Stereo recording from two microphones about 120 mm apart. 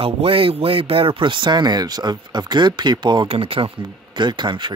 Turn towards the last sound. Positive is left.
turn(degrees=-40)  # may be behind; listen again after turning